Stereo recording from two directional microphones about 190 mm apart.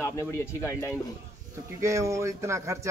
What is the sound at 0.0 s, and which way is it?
Speech, 15° left (ahead or behind).